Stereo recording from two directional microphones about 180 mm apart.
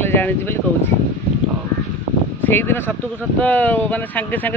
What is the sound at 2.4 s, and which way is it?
Speech, 10° left (ahead or behind).